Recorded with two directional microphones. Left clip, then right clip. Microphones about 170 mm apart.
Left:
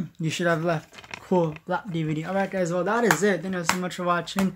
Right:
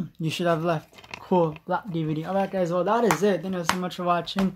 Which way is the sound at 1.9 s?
25° left (ahead or behind).